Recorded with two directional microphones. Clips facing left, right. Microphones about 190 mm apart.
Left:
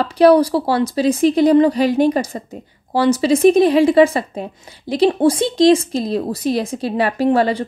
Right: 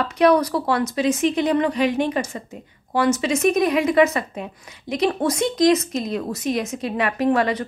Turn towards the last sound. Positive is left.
turn(degrees=30)  # may be behind; listen again after turning